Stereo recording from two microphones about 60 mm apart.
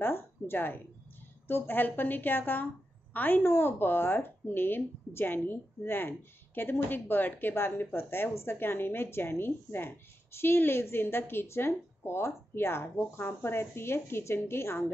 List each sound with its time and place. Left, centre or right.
0.0 s a woman's voice: left